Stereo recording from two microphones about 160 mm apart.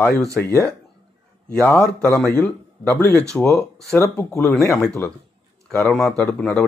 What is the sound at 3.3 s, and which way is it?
Speech, 5° left (ahead or behind).